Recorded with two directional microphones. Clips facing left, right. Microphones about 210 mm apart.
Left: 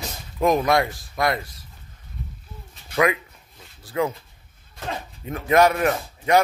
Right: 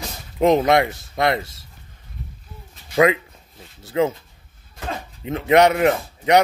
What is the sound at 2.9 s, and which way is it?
Speech, 25° right (ahead or behind).